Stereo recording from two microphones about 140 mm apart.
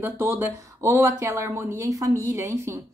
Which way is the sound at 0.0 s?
15° right (ahead or behind).